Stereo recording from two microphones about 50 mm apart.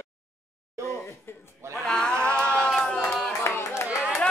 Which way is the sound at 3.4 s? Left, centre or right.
Left.